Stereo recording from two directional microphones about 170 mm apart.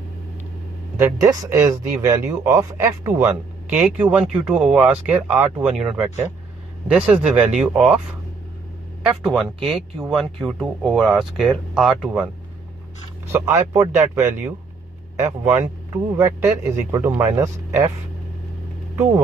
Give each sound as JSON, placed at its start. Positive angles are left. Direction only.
{"t": 0.9, "sound": "speech", "side_deg": -20}
{"t": 9.0, "sound": "speech", "side_deg": 0}
{"t": 13.3, "sound": "speech", "side_deg": -15}
{"t": 15.4, "sound": "speech", "side_deg": -15}